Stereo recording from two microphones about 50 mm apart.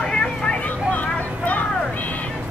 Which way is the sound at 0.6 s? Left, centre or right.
Left.